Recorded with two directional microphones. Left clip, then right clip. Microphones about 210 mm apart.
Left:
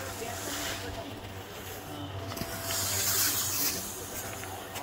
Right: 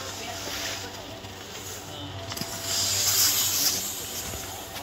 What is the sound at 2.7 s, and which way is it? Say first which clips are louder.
Rub: right 7 dB; 35° right (ahead or behind).